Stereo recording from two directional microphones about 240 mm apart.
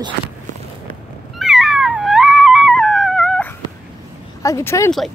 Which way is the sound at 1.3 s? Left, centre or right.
Centre.